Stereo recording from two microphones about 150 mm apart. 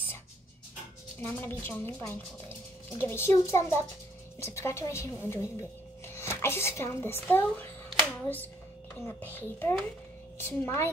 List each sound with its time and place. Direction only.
1.2 s a woman's voice: 15° left (ahead or behind)